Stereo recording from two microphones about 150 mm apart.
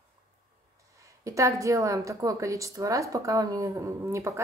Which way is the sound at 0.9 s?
20° right (ahead or behind).